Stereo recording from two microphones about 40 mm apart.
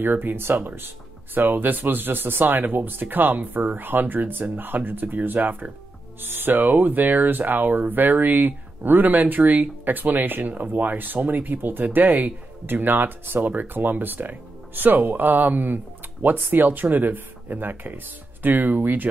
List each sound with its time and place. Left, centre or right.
0.0 s speech: right